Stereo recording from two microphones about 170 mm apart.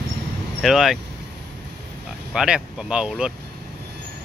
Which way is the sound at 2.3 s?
5° right (ahead or behind).